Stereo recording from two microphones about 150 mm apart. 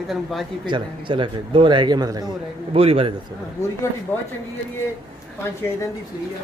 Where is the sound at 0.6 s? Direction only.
30° right (ahead or behind).